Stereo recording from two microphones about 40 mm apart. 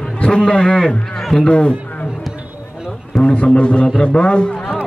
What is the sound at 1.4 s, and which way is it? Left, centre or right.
Speech, left.